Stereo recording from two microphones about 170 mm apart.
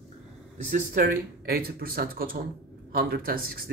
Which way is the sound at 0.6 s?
50° right (ahead or behind).